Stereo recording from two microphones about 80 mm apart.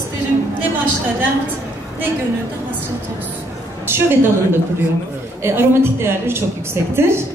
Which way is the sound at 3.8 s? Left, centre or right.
Right.